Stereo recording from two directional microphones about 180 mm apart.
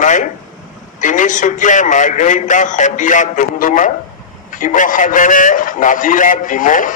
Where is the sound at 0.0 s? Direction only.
45° left (ahead or behind).